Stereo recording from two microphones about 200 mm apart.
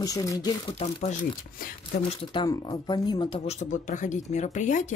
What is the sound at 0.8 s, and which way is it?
Speech, 30° left (ahead or behind).